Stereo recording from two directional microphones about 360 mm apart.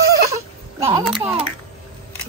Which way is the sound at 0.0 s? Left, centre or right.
Centre.